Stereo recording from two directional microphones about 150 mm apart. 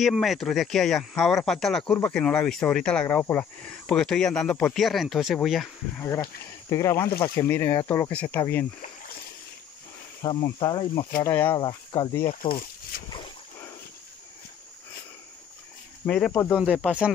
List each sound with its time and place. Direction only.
0.0 s speech: centre (ahead or behind)
5.9 s speech: 15° left (ahead or behind)
10.4 s speech: 25° left (ahead or behind)
11.2 s speech: 15° left (ahead or behind)
11.5 s speech: 25° left (ahead or behind)
12.3 s speech: 70° left (ahead or behind)
16.1 s speech: 10° left (ahead or behind)
16.5 s speech: 5° right (ahead or behind)